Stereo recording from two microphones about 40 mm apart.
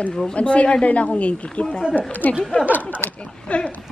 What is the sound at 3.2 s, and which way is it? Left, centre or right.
Speech, left.